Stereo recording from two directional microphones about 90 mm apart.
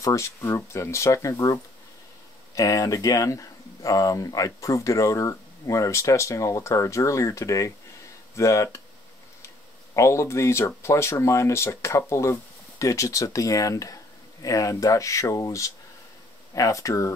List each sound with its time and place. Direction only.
0.0 s speech: 35° left (ahead or behind)
2.5 s speech: 40° left (ahead or behind)
9.9 s speech: 35° left (ahead or behind)